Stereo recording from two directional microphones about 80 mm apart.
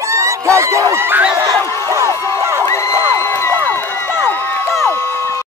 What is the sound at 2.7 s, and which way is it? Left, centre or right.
Crowd, left.